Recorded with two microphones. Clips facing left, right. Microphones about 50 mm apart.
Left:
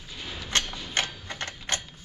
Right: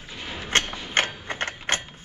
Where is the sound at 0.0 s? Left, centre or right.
Right.